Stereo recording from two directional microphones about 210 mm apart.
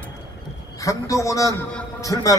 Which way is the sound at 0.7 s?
15° left (ahead or behind).